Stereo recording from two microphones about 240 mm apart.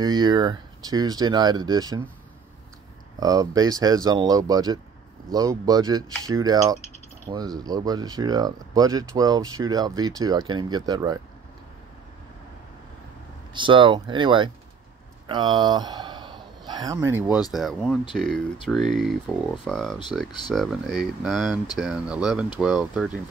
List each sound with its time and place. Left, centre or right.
0.0 s speech: centre
3.2 s speech: centre
13.5 s speech: centre
20.2 s speech: centre
20.5 s speech: centre